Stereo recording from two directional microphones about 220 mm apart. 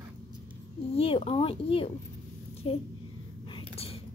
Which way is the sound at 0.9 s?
25° left (ahead or behind).